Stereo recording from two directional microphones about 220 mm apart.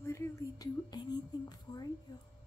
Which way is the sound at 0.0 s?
10° left (ahead or behind).